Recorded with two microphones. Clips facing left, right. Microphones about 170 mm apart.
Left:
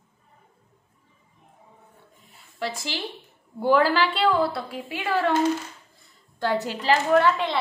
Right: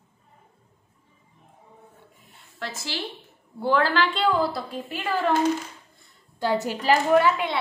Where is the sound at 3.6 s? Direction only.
10° left (ahead or behind).